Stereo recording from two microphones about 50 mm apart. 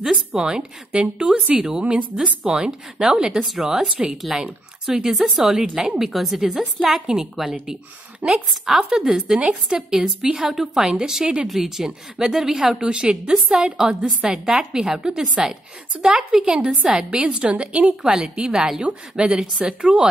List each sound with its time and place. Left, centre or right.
0.0 s speech: centre
3.9 s a woman's voice: right
4.8 s a woman's voice: centre
8.2 s a woman's voice: right
8.6 s speech: centre
12.8 s a woman's voice: right